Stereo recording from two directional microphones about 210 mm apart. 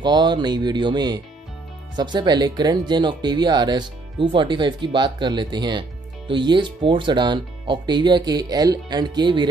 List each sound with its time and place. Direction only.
0.0 s speech: 20° right (ahead or behind)